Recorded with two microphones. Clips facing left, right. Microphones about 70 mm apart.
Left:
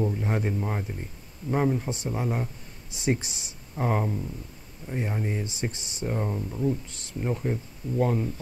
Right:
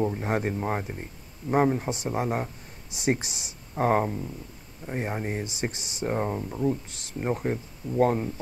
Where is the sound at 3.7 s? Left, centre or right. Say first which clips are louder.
Right 4 dB; right.